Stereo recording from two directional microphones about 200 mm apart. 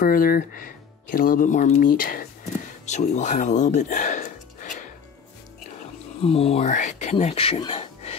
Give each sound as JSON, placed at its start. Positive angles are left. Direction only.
{"t": 0.0, "sound": "speech", "side_deg": 45}
{"t": 2.8, "sound": "a sound", "side_deg": 35}
{"t": 6.2, "sound": "speech", "side_deg": 30}